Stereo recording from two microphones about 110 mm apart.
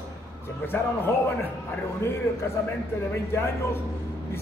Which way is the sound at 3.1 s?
25° left (ahead or behind).